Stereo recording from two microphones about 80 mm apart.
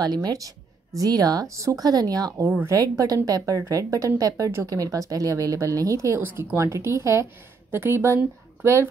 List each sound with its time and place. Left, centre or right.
0.0 s a woman's voice: right
2.6 s a woman's voice: right
6.2 s speech: right